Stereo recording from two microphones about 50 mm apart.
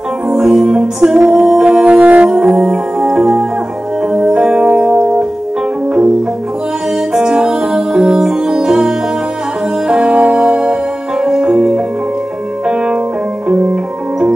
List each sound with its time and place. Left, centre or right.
0.3 s music: centre
2.3 s music: centre
7.2 s music: centre